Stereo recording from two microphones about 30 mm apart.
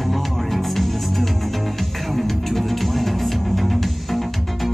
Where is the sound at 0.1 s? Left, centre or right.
Centre.